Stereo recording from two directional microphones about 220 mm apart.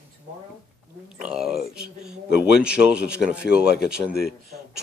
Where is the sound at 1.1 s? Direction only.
5° right (ahead or behind).